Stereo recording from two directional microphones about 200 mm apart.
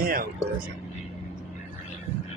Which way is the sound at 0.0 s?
45° right (ahead or behind).